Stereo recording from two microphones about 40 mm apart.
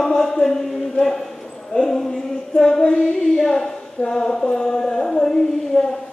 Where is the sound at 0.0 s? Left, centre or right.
Centre.